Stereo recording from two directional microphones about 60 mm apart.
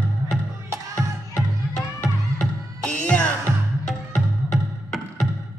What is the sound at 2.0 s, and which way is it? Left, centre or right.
Music, centre.